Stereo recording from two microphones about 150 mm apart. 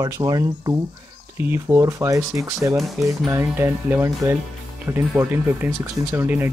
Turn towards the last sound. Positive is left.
turn(degrees=-15)  # may be behind; listen again after turning